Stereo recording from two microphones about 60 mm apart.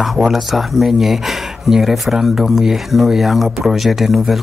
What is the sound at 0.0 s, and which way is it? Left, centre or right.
Speech, centre.